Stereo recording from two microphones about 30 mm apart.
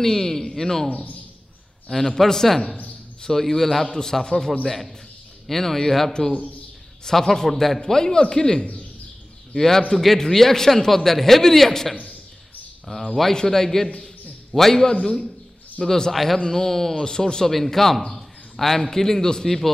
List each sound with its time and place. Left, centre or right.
0.0 s speech: centre
0.8 s a man's voice: left
1.9 s a man's voice: centre
3.4 s a man's voice: centre
4.6 s a man's voice: centre
7.9 s a man's voice: left; by 13.1 s centre
13.3 s a man's voice: centre
14.8 s a man's voice: left
16.1 s a man's voice: centre
17.0 s a man's voice: left
17.5 s a man's voice: centre